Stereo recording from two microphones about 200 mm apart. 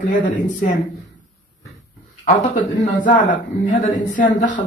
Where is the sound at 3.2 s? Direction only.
40° left (ahead or behind).